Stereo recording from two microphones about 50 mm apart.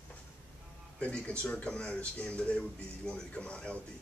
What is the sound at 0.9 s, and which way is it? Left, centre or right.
Speech, left.